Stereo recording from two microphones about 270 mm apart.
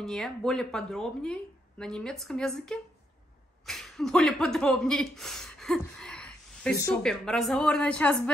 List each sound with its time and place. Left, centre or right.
0.0 s speech: centre